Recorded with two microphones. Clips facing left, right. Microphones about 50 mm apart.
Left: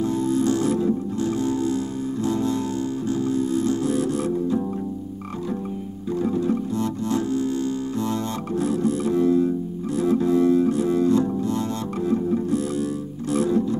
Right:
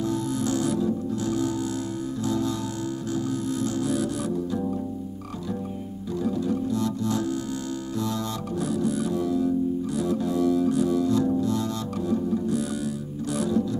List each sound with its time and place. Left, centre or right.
0.0 s music: left
6.1 s organ: left
8.0 s music: left